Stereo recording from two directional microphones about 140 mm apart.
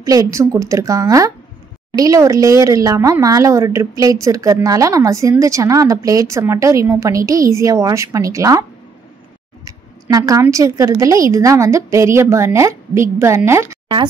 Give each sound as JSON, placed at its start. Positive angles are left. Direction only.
{"t": 0.0, "sound": "a woman's voice", "side_deg": -25}
{"t": 9.7, "sound": "a sound", "side_deg": -25}
{"t": 10.4, "sound": "a woman's voice", "side_deg": -25}